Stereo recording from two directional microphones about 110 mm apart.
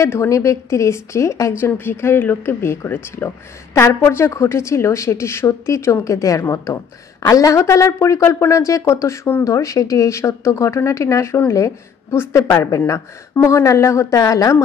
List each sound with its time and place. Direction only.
0.0 s speech: 25° left (ahead or behind)